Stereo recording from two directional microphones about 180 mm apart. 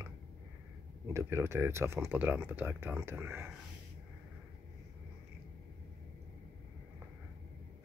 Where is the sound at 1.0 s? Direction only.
15° right (ahead or behind).